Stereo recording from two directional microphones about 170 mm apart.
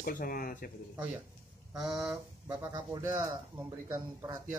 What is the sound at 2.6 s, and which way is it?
Speech, 20° right (ahead or behind).